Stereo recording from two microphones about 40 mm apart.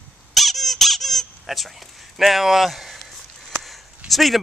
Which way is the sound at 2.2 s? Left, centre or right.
Centre.